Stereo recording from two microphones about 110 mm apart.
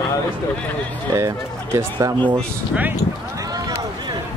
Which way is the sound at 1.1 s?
30° right (ahead or behind).